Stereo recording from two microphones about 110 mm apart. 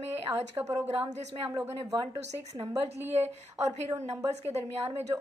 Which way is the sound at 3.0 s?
20° right (ahead or behind).